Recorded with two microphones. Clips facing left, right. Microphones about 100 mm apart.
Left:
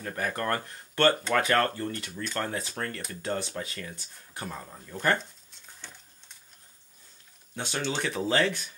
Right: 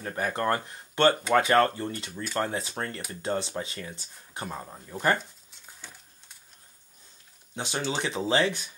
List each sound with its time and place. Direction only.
0.0 s speech: 25° right (ahead or behind)
5.8 s a sound: 5° right (ahead or behind)
7.5 s speech: 20° right (ahead or behind)